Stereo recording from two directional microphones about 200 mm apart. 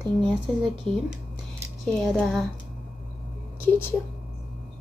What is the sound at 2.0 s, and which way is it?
Speech, centre (ahead or behind).